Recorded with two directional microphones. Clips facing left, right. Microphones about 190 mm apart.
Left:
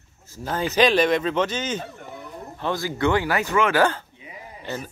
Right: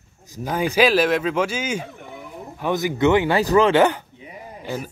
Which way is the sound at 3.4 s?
35° right (ahead or behind).